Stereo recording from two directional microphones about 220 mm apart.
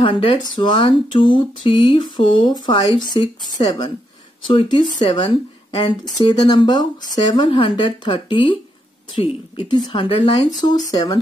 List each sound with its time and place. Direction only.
0.0 s speech: 25° left (ahead or behind)
9.7 s speech: 20° left (ahead or behind)